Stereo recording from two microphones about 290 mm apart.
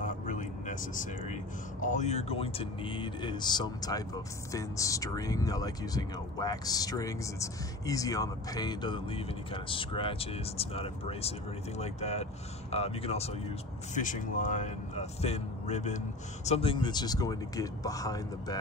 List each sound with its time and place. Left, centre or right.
0.0 s speech: left